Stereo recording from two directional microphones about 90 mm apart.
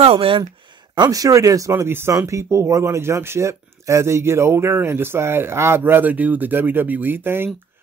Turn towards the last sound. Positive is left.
turn(degrees=-25)  # may be behind; listen again after turning